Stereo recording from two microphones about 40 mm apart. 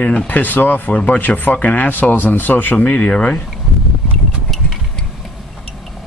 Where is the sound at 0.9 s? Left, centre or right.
Left.